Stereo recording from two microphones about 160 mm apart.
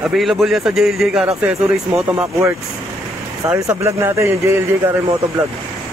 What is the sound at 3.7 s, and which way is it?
Speech, 20° right (ahead or behind).